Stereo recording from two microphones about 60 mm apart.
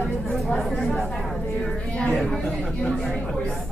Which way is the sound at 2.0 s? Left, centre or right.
Centre.